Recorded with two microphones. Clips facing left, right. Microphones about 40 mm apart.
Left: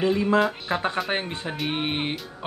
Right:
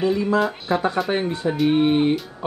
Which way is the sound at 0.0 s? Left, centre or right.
Left.